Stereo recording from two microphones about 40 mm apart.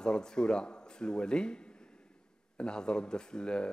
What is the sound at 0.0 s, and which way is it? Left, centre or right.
A man's voice, centre.